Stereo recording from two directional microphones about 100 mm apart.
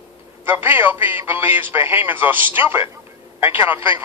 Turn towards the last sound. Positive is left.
turn(degrees=-20)  # may be behind; listen again after turning